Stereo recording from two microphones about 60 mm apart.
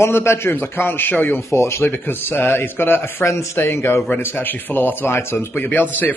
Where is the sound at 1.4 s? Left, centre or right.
Left.